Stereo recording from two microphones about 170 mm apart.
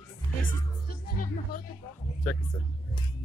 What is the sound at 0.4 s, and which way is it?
Music, 50° left (ahead or behind).